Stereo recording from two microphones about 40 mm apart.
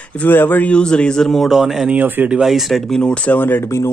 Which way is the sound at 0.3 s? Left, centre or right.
Left.